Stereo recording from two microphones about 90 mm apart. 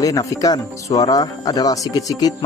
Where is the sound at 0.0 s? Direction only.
40° left (ahead or behind).